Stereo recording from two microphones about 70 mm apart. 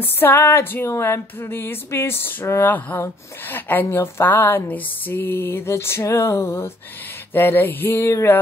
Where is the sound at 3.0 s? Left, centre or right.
Left.